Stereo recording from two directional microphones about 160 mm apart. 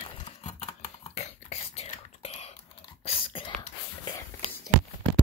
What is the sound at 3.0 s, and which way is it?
Whispering, 40° left (ahead or behind).